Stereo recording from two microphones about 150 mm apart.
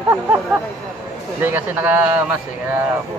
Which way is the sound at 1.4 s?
10° right (ahead or behind).